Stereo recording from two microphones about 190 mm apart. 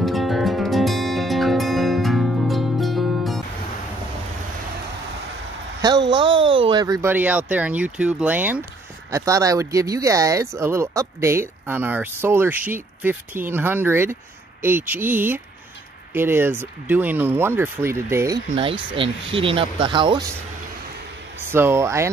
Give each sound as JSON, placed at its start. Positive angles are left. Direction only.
{"t": 0.0, "sound": "music", "side_deg": 0}
{"t": 5.8, "sound": "a sound", "side_deg": -20}
{"t": 7.1, "sound": "speech", "side_deg": -10}
{"t": 21.5, "sound": "speech", "side_deg": -15}